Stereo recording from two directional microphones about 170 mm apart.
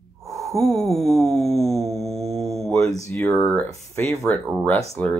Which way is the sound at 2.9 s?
20° left (ahead or behind).